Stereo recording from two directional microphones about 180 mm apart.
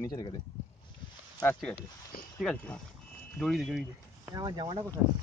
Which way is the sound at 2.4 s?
5° left (ahead or behind).